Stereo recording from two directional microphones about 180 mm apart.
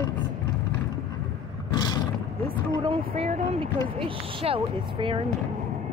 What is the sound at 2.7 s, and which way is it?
Speech, 30° right (ahead or behind).